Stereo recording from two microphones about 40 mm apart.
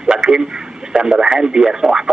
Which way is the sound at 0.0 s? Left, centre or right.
Right.